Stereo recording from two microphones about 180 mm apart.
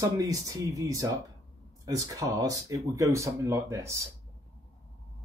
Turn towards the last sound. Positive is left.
turn(degrees=-15)  # may be behind; listen again after turning